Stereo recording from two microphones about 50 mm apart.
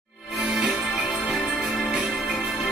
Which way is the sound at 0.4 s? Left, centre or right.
Centre.